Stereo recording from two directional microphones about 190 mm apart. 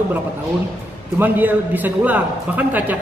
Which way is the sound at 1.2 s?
10° right (ahead or behind).